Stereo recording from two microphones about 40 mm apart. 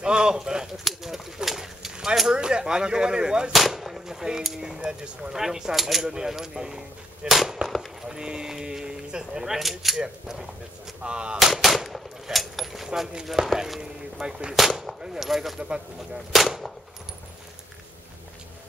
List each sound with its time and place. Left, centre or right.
0.0 s a sound: centre
0.8 s bird: centre
2.3 s speech: right
3.7 s a sound: centre
4.6 s speech: centre
5.3 s speech: centre
7.2 s whip: centre
8.1 s speech: centre
9.9 s speech: centre
11.3 s speech: centre
13.4 s speech: right
13.7 s speech: centre
14.5 s whip: centre